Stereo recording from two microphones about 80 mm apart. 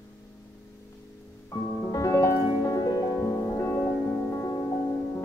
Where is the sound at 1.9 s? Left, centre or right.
Left.